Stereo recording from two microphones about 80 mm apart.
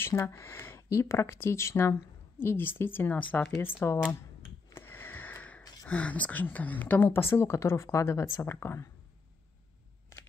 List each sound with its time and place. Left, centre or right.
0.3 s speech: left
4.7 s sniff: left
5.6 s a sound: left
5.9 s a woman's voice: centre; by 8.9 s left